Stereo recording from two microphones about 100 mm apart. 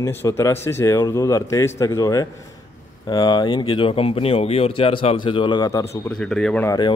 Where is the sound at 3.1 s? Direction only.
45° left (ahead or behind).